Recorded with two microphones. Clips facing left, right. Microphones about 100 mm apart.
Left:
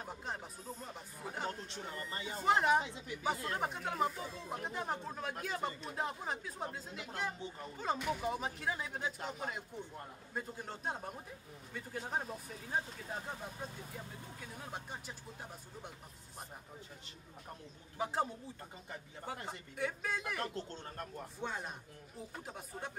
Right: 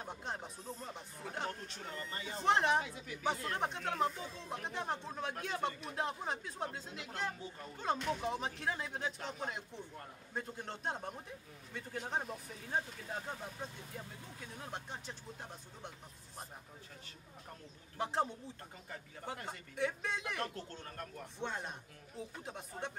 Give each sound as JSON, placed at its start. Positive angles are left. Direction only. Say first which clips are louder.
{"t": 0.0, "sound": "speech", "louder": "even", "side_deg": 0}
{"t": 2.0, "sound": "speech", "louder": "even", "side_deg": 15}
{"t": 2.4, "sound": "speech", "louder": "left 1 dB", "side_deg": 5}
{"t": 17.9, "sound": "speech", "louder": "even", "side_deg": 5}
{"t": 20.5, "sound": "speech", "louder": "left 3 dB", "side_deg": 25}
{"t": 21.4, "sound": "speech", "louder": "right 1 dB", "side_deg": 5}